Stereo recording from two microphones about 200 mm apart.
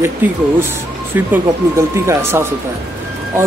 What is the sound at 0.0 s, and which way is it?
Speech, 10° right (ahead or behind).